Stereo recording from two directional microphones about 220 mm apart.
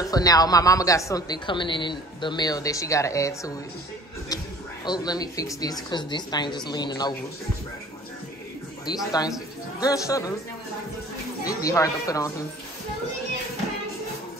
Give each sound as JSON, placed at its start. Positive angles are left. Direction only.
{"t": 0.0, "sound": "a woman's voice", "side_deg": 15}
{"t": 4.8, "sound": "speech", "side_deg": 20}
{"t": 8.8, "sound": "a woman's voice", "side_deg": 15}
{"t": 11.4, "sound": "a woman's voice", "side_deg": 15}